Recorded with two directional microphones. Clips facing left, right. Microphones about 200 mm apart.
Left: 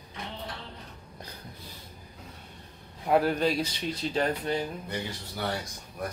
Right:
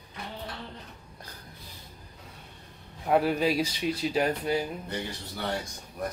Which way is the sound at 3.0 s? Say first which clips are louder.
Even; centre (ahead or behind).